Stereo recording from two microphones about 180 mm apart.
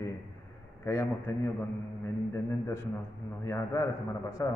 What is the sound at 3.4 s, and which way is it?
A man's voice, 15° left (ahead or behind).